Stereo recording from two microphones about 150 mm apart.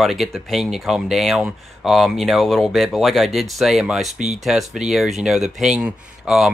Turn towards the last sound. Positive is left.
turn(degrees=-5)  # may be behind; listen again after turning